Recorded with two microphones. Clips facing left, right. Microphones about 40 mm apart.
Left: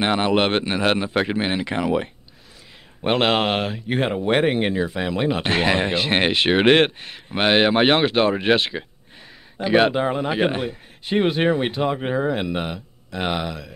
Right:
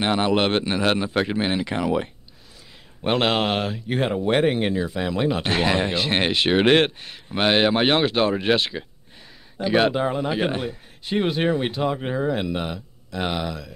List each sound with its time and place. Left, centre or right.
0.0 s speech: left